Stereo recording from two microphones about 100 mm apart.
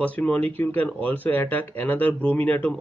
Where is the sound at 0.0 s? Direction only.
15° left (ahead or behind).